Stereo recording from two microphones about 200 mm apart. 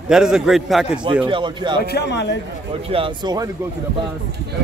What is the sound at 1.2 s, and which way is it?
Speech, 25° right (ahead or behind).